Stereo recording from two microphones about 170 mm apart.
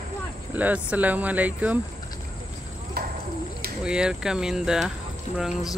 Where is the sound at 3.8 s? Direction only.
5° right (ahead or behind).